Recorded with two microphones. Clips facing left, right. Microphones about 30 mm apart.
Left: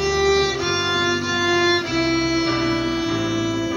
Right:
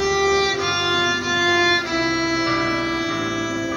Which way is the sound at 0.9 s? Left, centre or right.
Centre.